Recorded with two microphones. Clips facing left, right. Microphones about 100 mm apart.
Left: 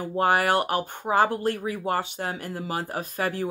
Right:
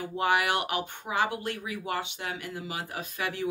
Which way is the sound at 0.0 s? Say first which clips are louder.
Left 4 dB; 40° left (ahead or behind).